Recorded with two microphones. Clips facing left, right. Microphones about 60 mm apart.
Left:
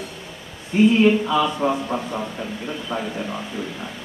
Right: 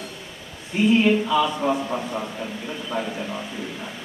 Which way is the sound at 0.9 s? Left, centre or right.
Left.